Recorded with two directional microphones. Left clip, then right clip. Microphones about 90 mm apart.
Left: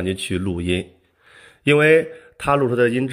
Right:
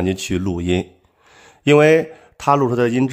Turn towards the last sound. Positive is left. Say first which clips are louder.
# right 1 dB
turn(degrees=-35)  # may be behind; listen again after turning